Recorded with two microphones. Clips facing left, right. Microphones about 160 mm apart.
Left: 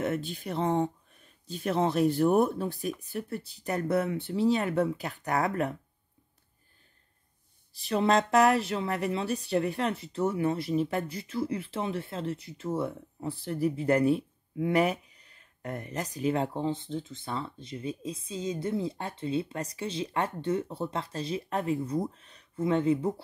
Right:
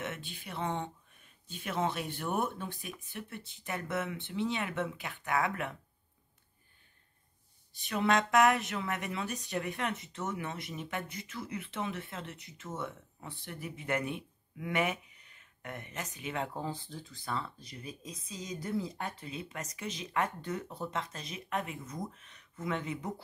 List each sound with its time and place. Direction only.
0.0 s speech: 40° left (ahead or behind)
7.7 s speech: 30° left (ahead or behind)